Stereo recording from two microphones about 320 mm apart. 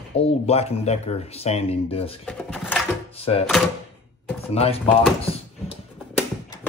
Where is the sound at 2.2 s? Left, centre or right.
Centre.